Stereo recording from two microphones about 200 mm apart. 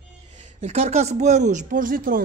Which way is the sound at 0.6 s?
35° right (ahead or behind).